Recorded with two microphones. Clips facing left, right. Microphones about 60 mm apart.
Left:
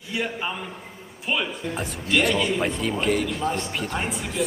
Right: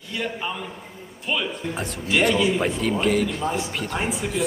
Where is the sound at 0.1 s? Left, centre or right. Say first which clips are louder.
Left 1 dB; centre.